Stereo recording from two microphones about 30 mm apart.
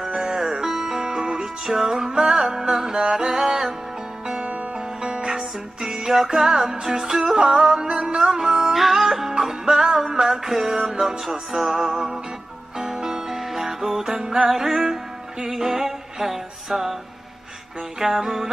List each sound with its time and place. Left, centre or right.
0.1 s music: right
0.4 s music: centre
3.0 s music: right
5.0 s music: right; by 16.9 s centre
17.9 s music: centre